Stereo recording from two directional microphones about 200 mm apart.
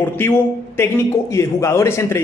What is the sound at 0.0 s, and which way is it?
A man's voice, 10° left (ahead or behind).